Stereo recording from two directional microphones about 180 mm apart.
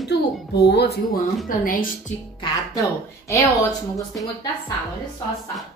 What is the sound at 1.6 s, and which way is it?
Speech, 50° left (ahead or behind).